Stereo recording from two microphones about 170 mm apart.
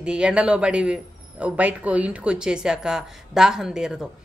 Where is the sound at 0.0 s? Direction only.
5° right (ahead or behind).